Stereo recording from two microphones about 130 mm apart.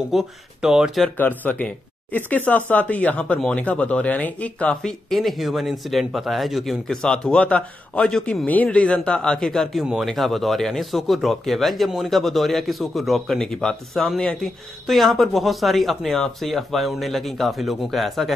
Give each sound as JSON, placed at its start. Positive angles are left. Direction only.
{"t": 0.1, "sound": "speech", "side_deg": -5}
{"t": 1.1, "sound": "speech", "side_deg": 15}